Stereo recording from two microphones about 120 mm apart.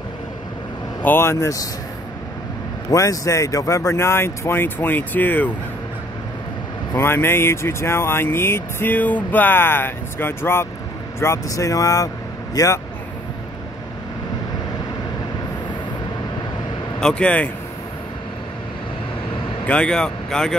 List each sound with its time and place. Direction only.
1.0 s speech: 20° left (ahead or behind)
2.9 s speech: 25° left (ahead or behind)
7.0 s speech: 20° left (ahead or behind)
17.0 s speech: 10° left (ahead or behind)
19.6 s speech: 10° left (ahead or behind)